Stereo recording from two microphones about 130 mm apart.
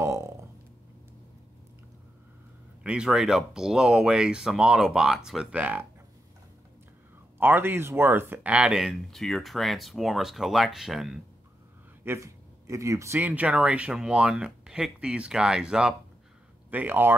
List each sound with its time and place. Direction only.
0.0 s a sound: 20° right (ahead or behind)
2.8 s speech: 5° right (ahead or behind)
7.3 s speech: 15° right (ahead or behind)
12.0 s speech: 20° right (ahead or behind)